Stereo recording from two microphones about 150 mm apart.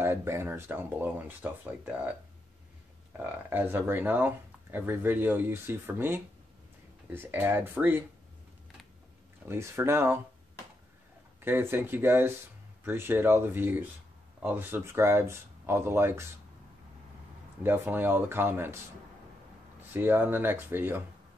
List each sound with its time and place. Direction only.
0.0 s speech: 15° right (ahead or behind)
3.1 s speech: 15° right (ahead or behind)
9.5 s speech: 15° right (ahead or behind)
11.4 s speech: 15° right (ahead or behind)
17.6 s speech: 15° right (ahead or behind)
19.9 s speech: 15° right (ahead or behind)